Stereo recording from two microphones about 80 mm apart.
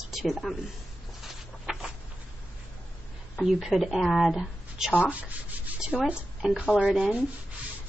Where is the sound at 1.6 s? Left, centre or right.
Centre.